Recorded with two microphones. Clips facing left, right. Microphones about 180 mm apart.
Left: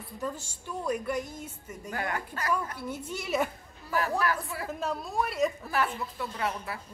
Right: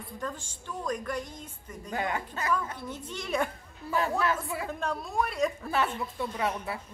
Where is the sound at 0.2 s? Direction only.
10° left (ahead or behind).